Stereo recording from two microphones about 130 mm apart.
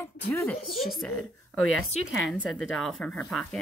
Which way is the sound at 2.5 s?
5° left (ahead or behind).